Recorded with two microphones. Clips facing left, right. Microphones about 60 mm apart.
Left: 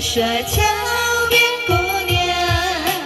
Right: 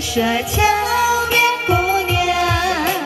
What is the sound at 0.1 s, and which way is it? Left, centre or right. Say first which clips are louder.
Music: right 1 dB; right.